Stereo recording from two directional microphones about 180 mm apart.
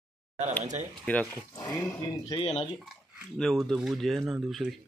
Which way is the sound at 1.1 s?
10° left (ahead or behind).